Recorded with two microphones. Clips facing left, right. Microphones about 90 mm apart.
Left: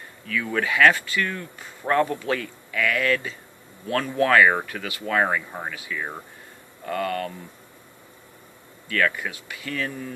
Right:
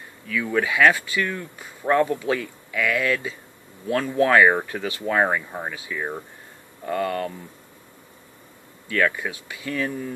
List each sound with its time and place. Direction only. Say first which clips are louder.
0.3 s speech: right 2 dB; 15° right (ahead or behind)
4.6 s speech: right 3 dB; 30° right (ahead or behind)
8.8 s speech: right 1 dB; 20° right (ahead or behind)